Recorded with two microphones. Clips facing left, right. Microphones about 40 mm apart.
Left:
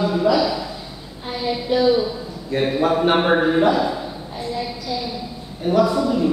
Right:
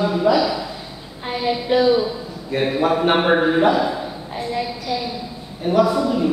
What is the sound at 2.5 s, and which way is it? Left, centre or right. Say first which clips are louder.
A man's voice: even; centre.